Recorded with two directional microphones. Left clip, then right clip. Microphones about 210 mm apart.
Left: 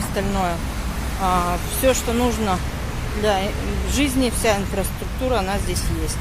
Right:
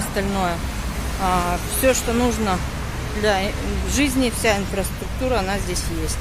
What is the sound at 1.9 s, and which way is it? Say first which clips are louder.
Speech: even; 5° right (ahead or behind).